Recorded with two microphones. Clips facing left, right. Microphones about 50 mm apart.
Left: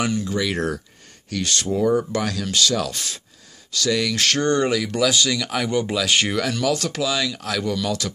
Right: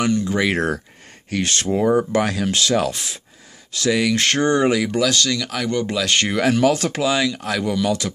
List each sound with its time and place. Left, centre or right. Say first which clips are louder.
0.0 s speech: right 4 dB; centre
0.3 s speech: right 4 dB; right
3.9 s speech: right 3 dB; centre
5.0 s speech: even; centre
6.4 s speech: right 5 dB; right; by 8.1 s centre